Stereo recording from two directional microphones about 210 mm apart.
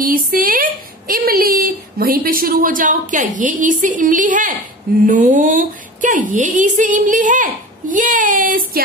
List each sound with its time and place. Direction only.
0.0 s speech: 40° right (ahead or behind)